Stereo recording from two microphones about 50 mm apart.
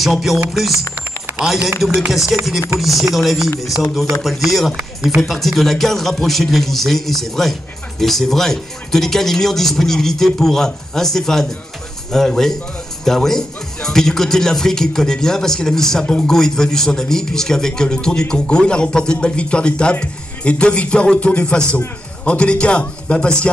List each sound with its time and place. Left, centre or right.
0.0 s a man's voice: centre